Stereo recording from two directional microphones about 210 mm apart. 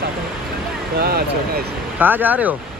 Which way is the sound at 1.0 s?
50° right (ahead or behind).